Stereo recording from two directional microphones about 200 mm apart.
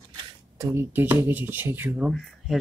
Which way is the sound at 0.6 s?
15° right (ahead or behind).